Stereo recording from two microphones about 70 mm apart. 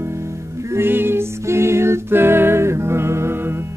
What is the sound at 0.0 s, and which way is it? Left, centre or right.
Music, right.